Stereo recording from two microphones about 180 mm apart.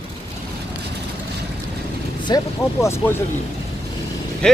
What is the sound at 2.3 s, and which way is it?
Speech, 25° left (ahead or behind).